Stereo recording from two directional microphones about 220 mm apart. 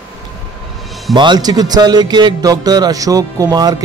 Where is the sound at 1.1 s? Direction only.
20° right (ahead or behind).